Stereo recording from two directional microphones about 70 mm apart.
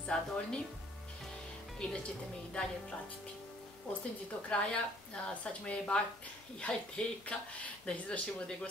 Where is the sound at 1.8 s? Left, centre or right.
Centre.